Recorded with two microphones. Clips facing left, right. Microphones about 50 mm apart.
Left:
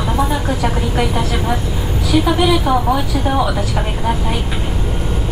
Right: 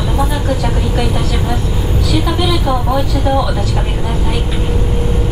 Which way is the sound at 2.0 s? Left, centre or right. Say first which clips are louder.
Left 3 dB; centre.